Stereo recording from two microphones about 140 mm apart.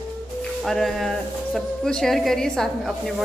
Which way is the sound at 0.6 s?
Centre (ahead or behind).